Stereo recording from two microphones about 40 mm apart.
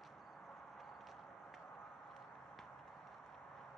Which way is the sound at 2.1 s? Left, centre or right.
Centre.